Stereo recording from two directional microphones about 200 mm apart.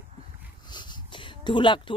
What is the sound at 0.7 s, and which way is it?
Dog, 20° left (ahead or behind).